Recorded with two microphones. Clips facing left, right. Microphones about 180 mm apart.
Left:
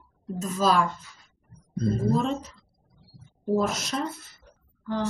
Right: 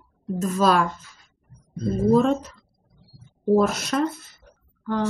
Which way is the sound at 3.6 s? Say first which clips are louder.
Right 4 dB; 60° right (ahead or behind).